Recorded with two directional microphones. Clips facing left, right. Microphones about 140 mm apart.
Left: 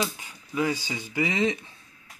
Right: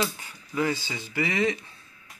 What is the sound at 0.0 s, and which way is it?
Speech, 15° left (ahead or behind).